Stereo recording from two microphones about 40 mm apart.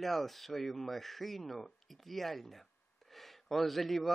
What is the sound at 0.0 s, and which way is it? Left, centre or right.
A man's voice, centre.